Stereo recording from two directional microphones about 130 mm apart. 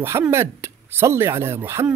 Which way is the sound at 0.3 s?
20° right (ahead or behind).